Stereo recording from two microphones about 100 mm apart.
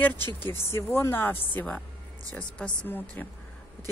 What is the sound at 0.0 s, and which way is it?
A woman's voice, 20° left (ahead or behind).